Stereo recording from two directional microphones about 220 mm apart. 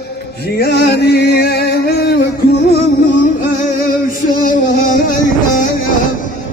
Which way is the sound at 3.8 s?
40° left (ahead or behind).